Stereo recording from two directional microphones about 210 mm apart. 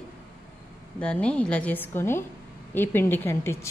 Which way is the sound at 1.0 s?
5° left (ahead or behind).